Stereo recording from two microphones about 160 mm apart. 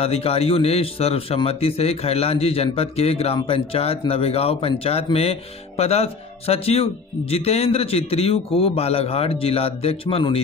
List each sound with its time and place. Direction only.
0.0 s a man's voice: 40° left (ahead or behind)